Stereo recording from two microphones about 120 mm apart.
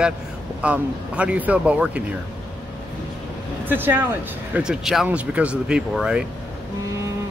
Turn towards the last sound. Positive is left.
turn(degrees=-5)  # may be behind; listen again after turning